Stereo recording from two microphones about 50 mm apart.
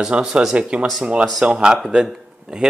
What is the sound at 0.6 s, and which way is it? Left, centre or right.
A man's voice, right.